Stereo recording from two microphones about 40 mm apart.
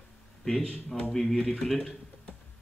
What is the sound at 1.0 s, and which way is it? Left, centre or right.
Speech, centre.